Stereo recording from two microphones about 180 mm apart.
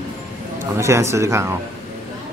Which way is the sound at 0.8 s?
15° right (ahead or behind).